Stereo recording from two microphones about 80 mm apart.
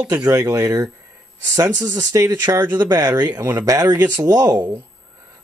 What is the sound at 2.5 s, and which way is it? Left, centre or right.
Speech, right.